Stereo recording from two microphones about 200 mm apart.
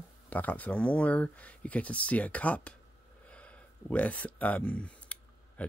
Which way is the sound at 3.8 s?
5° left (ahead or behind).